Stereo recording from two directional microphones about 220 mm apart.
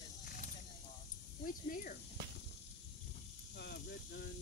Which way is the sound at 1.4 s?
40° left (ahead or behind).